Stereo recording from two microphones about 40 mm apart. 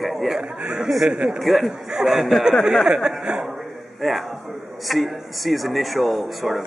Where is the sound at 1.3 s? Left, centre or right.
Centre.